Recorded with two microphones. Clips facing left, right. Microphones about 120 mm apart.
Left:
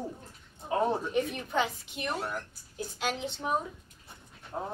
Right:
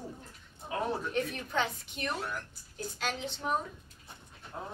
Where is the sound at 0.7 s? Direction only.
30° left (ahead or behind).